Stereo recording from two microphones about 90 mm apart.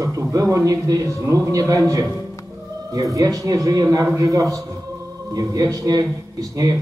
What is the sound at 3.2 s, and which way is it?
A man's voice, 40° right (ahead or behind).